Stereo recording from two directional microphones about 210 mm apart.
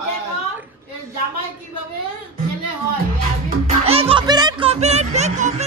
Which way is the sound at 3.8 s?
30° right (ahead or behind).